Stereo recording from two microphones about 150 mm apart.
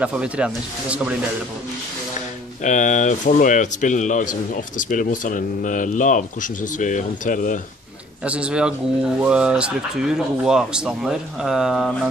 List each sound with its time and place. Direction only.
0.0 s speech: 5° right (ahead or behind)
2.6 s speech: 55° left (ahead or behind)
8.2 s speech: 5° right (ahead or behind)